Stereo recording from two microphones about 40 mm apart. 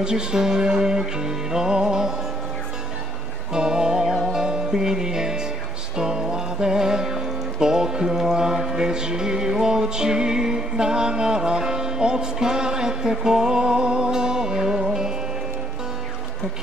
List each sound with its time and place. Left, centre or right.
0.0 s music: centre
3.5 s music: centre